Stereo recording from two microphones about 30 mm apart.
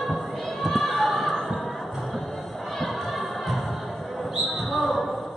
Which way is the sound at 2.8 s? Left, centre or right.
Centre.